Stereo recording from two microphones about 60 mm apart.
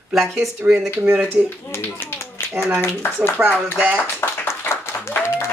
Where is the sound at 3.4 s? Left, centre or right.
Right.